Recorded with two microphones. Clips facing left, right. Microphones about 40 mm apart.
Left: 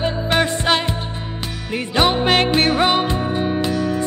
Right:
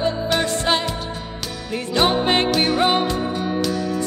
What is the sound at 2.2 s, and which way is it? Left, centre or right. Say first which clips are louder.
Music: left 2 dB; left.